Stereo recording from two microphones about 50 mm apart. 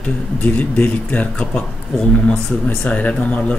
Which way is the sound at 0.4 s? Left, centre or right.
Left.